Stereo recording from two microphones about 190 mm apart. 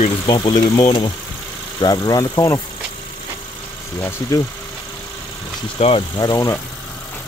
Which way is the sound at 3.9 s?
15° left (ahead or behind).